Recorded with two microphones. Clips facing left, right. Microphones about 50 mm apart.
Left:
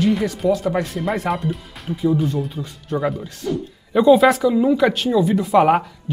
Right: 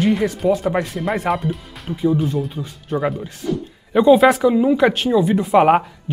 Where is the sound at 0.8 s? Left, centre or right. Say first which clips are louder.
Right 1 dB; centre.